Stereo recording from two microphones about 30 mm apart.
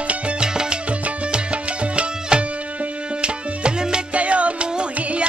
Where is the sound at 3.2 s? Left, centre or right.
Right.